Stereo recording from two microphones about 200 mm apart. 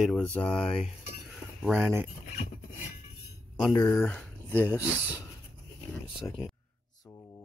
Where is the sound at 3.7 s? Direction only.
15° left (ahead or behind).